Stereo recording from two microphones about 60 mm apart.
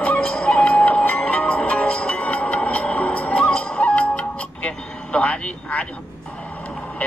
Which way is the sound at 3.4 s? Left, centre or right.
Centre.